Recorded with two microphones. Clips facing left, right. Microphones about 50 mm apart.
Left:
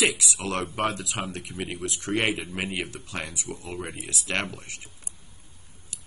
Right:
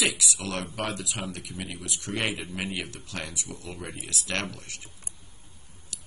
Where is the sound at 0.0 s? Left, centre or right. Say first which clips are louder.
Left 3 dB; left.